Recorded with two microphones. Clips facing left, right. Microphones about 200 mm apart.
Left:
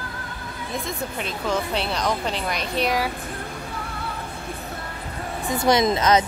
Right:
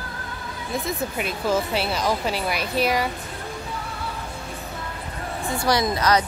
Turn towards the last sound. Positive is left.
turn(degrees=20)  # may be behind; listen again after turning